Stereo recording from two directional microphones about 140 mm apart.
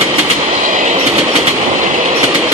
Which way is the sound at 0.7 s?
65° right (ahead or behind).